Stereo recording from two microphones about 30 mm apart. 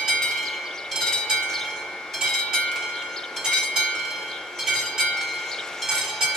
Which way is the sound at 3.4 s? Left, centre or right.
Left.